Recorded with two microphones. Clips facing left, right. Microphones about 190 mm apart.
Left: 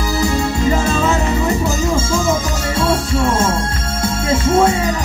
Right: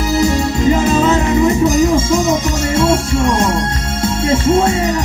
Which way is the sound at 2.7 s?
25° right (ahead or behind).